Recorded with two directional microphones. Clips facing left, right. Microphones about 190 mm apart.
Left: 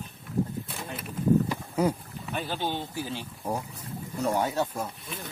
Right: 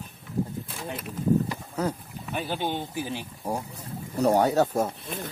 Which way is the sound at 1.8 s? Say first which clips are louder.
Left 3 dB; 10° left (ahead or behind).